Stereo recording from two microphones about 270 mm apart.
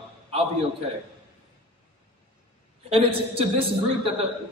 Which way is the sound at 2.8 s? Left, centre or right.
Right.